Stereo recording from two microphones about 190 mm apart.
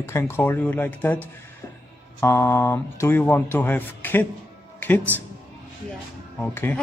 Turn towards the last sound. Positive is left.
turn(degrees=10)  # may be behind; listen again after turning